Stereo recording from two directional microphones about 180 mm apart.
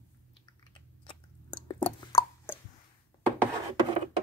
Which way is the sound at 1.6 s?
25° left (ahead or behind).